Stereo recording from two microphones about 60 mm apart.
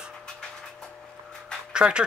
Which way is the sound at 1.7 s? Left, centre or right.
Centre.